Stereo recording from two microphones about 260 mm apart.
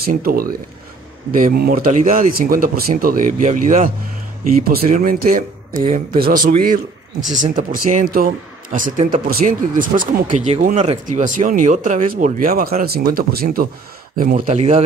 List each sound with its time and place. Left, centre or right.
0.0 s speech: right